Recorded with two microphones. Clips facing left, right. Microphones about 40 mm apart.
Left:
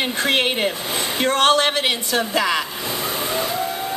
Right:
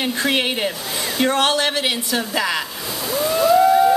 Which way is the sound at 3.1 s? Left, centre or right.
Left.